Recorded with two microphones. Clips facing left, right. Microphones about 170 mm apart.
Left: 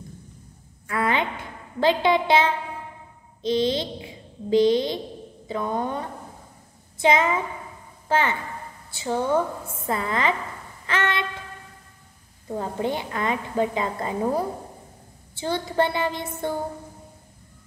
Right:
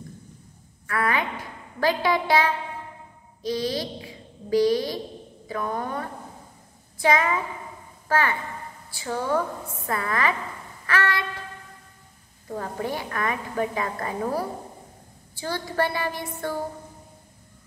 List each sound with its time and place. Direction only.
0.8 s a woman's voice: 25° left (ahead or behind)
10.9 s a sound: 20° left (ahead or behind)
12.5 s a woman's voice: 20° left (ahead or behind)